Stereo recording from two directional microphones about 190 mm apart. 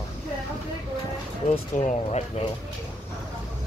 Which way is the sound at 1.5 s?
30° left (ahead or behind).